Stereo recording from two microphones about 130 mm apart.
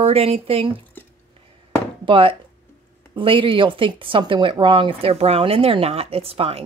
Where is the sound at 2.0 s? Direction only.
40° right (ahead or behind).